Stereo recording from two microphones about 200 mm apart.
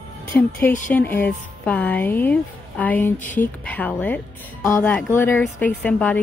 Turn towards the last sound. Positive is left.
turn(degrees=5)  # may be behind; listen again after turning